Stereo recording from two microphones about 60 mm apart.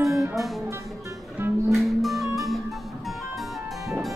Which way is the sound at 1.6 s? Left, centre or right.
Centre.